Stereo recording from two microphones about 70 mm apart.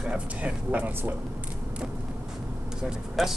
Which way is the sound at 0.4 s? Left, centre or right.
Centre.